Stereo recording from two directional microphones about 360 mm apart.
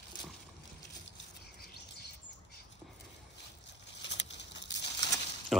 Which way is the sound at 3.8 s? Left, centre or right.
Left.